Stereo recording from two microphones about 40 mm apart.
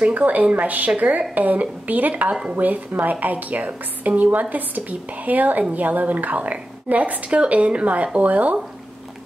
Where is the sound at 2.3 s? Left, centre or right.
Right.